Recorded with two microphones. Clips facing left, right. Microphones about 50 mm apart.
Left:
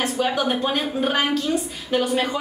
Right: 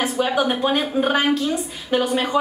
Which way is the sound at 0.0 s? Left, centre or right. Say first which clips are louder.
Right 2 dB; centre.